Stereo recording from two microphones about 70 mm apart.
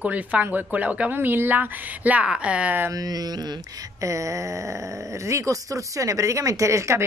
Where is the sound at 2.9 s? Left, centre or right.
Right.